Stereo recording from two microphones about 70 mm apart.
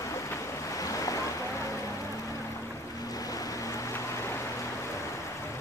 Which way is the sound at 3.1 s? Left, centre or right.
Left.